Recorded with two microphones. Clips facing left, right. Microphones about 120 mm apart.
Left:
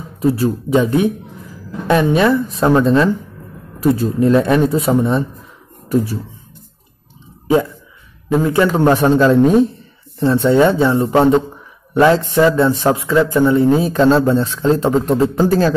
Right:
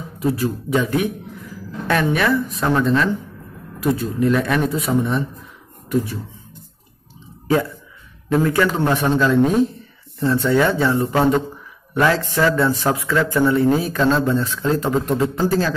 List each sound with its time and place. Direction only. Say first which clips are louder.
0.2 s a man's voice: left 5 dB; 30° left (ahead or behind)
8.3 s a man's voice: left 3 dB; 15° left (ahead or behind)
8.7 s a man's voice: left 6 dB; 40° left (ahead or behind)
15.3 s a man's voice: left 5 dB; 45° left (ahead or behind)